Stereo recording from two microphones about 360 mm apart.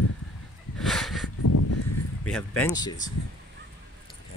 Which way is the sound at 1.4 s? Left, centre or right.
Left.